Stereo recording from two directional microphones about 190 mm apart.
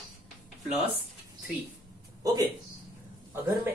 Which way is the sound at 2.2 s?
20° right (ahead or behind).